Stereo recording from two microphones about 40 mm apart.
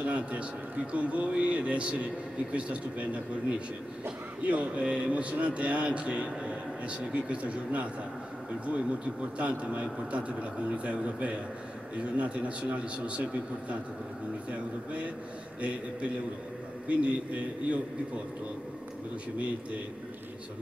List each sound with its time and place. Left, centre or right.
0.0 s a man's voice: right
16.8 s a man's voice: right